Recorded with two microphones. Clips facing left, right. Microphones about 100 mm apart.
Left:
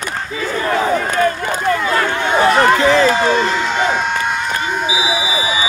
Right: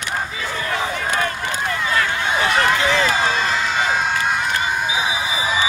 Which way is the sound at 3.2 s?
45° left (ahead or behind).